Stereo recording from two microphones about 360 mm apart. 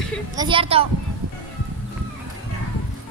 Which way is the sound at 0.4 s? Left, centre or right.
Centre.